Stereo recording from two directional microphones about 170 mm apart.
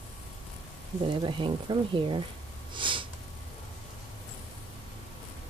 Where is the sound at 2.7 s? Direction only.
30° right (ahead or behind).